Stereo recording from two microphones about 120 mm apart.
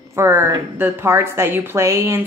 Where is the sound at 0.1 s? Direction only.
20° right (ahead or behind).